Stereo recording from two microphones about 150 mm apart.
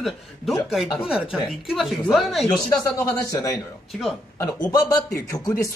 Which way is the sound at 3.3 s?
20° left (ahead or behind).